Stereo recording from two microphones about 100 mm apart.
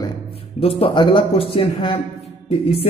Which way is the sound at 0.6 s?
70° left (ahead or behind).